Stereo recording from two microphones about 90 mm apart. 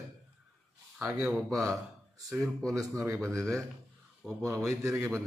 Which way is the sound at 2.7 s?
35° right (ahead or behind).